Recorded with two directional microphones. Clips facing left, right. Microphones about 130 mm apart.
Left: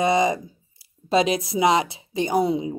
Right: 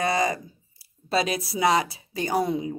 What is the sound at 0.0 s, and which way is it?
Speech, 25° left (ahead or behind).